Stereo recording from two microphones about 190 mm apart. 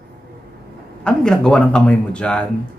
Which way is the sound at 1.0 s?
5° left (ahead or behind).